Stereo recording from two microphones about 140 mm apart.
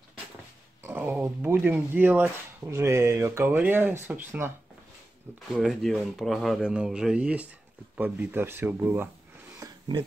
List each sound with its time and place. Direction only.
0.8 s speech: 15° right (ahead or behind)
5.5 s speech: centre (ahead or behind); by 9.1 s 15° right (ahead or behind)
9.6 s a sound: 30° right (ahead or behind)